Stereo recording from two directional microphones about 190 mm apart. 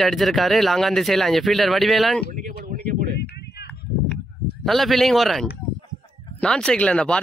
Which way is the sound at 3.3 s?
55° left (ahead or behind).